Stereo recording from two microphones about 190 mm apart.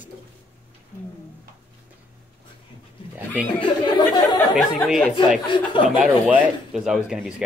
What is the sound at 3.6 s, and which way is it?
Speech, 20° left (ahead or behind).